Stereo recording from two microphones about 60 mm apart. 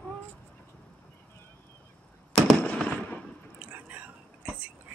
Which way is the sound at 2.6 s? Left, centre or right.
Centre.